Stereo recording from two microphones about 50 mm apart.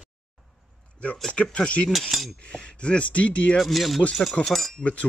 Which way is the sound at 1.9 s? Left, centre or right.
Centre.